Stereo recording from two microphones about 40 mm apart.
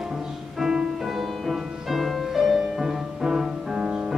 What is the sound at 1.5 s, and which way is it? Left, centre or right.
Music, centre.